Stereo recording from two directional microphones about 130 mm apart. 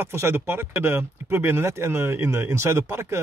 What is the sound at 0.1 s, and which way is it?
Speech, 20° right (ahead or behind).